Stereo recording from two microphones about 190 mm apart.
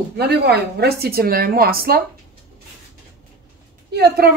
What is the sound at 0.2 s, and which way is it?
A woman's voice, 60° right (ahead or behind).